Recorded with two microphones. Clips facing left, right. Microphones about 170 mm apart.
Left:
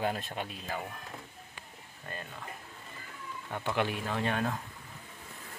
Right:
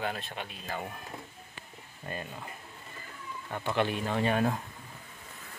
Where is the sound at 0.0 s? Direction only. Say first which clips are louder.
Left 2 dB; 40° left (ahead or behind).